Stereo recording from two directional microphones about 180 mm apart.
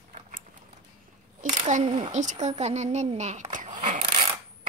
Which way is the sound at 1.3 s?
45° right (ahead or behind).